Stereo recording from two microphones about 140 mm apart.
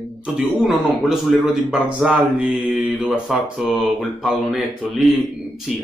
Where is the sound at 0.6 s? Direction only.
Centre (ahead or behind).